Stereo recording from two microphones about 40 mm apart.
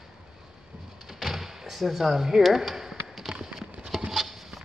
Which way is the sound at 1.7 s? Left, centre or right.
Centre.